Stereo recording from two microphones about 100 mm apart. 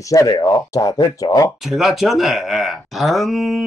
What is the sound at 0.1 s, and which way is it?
Speech, 35° left (ahead or behind).